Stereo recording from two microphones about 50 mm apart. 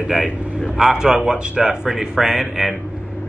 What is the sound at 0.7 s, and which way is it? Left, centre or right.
A man's voice, centre.